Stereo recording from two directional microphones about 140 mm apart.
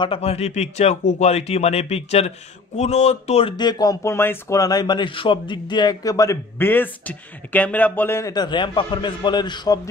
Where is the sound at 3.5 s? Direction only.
30° left (ahead or behind).